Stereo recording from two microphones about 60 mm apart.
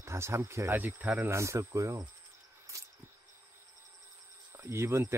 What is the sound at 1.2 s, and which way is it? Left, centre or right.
Speech, right.